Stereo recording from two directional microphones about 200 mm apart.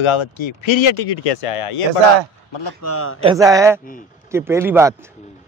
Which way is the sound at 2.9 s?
90° left.